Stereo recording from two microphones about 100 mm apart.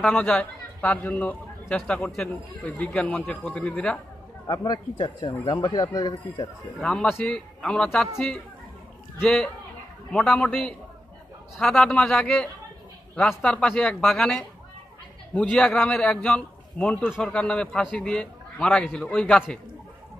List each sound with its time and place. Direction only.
0.0 s a man's voice: 10° left (ahead or behind)
1.8 s a man's voice: centre (ahead or behind)
4.5 s speech: 45° left (ahead or behind)
6.8 s a man's voice: 10° left (ahead or behind)
10.1 s a man's voice: 10° left (ahead or behind)